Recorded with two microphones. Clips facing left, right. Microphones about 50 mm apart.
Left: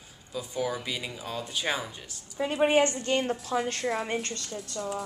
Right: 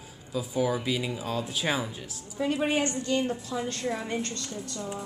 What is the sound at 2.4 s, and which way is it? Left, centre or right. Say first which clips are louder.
Speech: left 2 dB; centre.